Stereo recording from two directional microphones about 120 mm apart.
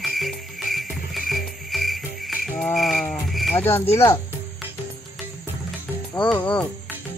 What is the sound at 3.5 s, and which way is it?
Speech, 20° left (ahead or behind).